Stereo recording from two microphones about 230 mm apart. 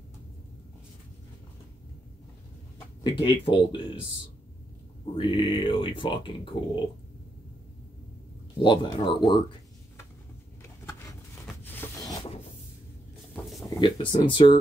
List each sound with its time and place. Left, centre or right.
3.0 s speech: left
5.1 s speech: left
8.6 s speech: centre
10.6 s a sound: centre
13.7 s speech: centre